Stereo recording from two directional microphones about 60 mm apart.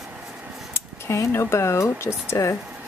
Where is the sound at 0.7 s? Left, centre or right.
Left.